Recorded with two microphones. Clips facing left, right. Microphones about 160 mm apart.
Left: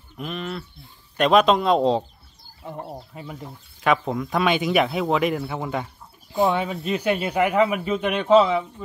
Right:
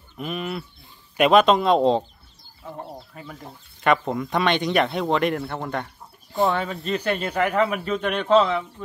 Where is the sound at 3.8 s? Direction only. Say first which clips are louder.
Right 1 dB; centre (ahead or behind).